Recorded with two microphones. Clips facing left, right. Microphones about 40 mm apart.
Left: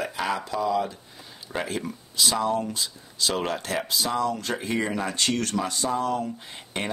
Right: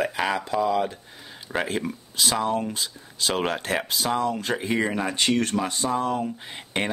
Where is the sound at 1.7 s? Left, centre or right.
Right.